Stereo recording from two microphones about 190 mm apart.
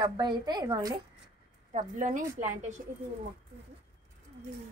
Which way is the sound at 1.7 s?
40° right (ahead or behind).